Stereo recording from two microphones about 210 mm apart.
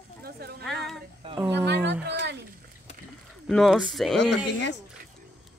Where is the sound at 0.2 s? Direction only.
50° right (ahead or behind).